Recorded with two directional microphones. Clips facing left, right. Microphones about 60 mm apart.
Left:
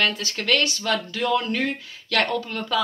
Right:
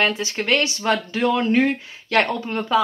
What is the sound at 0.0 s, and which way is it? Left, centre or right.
Speech, right.